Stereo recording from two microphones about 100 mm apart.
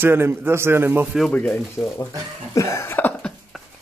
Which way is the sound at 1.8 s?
30° left (ahead or behind).